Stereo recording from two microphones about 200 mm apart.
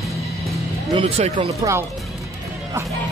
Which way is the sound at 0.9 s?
30° right (ahead or behind).